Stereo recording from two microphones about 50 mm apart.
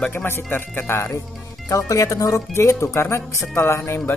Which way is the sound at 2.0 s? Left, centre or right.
Left.